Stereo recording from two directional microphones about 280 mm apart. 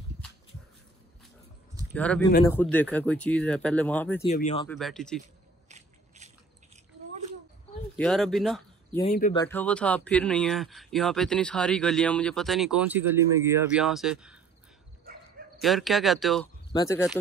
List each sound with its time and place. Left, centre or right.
2.0 s speech: centre
4.2 s speech: left
4.6 s speech: centre
5.7 s a sound: right
7.9 s speech: centre
15.6 s speech: centre
16.7 s speech: centre